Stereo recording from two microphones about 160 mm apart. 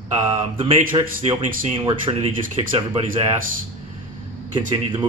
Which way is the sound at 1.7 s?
30° right (ahead or behind).